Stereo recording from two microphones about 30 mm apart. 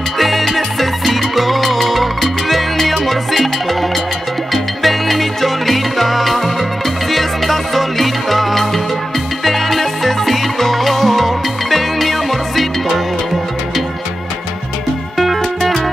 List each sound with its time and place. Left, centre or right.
0.2 s music: centre
15.1 s music: centre